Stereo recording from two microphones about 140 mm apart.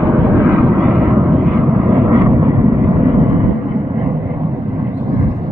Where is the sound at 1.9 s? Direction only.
25° right (ahead or behind).